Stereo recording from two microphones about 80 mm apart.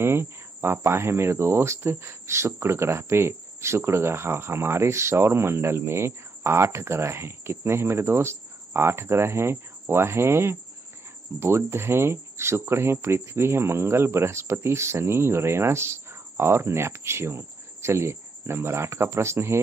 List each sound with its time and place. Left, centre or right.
0.0 s cricket: right